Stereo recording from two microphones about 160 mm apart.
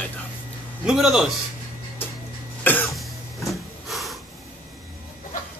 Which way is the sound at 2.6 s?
10° left (ahead or behind).